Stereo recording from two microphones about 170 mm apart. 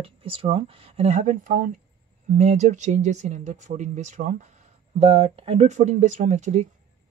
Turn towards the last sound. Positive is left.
turn(degrees=-45)  # may be behind; listen again after turning